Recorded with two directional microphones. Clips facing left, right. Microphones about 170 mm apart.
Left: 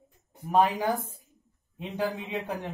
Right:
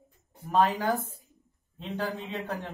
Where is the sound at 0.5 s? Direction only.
10° left (ahead or behind).